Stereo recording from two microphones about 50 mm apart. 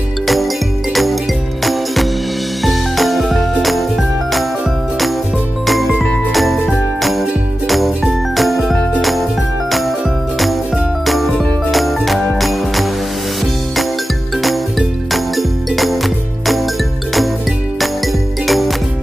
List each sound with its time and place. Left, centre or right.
1.6 s music: centre
6.3 s jingle: centre
7.0 s music: centre
9.7 s jingle: centre
11.1 s music: centre
14.4 s music: centre
17.7 s music: centre